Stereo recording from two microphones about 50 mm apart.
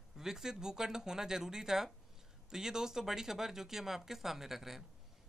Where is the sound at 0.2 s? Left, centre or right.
Centre.